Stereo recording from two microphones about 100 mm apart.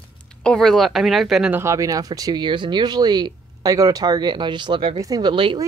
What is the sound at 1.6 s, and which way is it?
A woman's voice, 35° right (ahead or behind).